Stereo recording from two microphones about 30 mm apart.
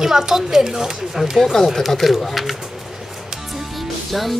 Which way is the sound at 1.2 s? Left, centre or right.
Centre.